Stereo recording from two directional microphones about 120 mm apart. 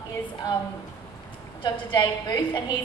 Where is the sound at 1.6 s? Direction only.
40° left (ahead or behind).